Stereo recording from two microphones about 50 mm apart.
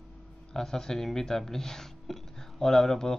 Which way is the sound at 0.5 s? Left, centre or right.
Centre.